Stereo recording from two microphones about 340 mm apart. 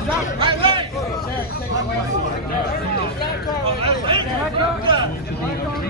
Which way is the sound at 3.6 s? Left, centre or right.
Centre.